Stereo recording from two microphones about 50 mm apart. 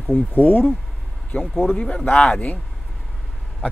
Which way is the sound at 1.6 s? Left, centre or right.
Left.